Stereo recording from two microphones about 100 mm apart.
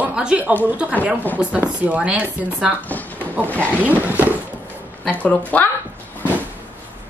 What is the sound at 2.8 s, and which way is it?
Drawer open or close, 15° left (ahead or behind).